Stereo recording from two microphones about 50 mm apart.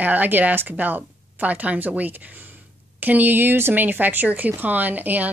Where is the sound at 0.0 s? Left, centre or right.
Right.